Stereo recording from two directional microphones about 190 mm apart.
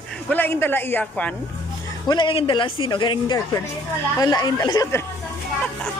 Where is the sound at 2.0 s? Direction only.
25° left (ahead or behind).